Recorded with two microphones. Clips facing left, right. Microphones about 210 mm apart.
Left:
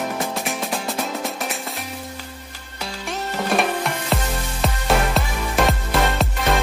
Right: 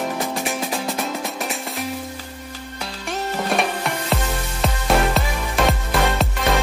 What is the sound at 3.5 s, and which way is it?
Music, centre (ahead or behind).